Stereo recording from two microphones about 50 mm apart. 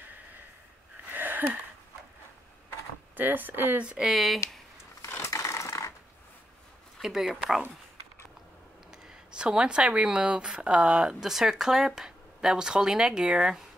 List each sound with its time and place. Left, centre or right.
1.1 s a sound: right
3.2 s speech: right
3.8 s speech: centre
4.1 s speech: centre
5.3 s filing: left
7.0 s speech: centre
9.0 s speech: centre